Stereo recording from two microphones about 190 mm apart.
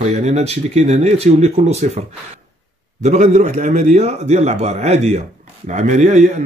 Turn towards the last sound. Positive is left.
turn(degrees=-40)  # may be behind; listen again after turning